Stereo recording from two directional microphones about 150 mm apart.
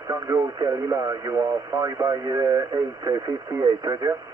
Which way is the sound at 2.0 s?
30° right (ahead or behind).